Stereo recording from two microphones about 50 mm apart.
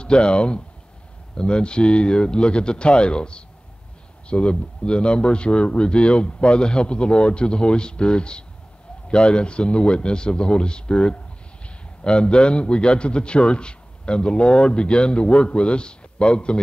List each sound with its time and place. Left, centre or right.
0.0 s a man's voice: centre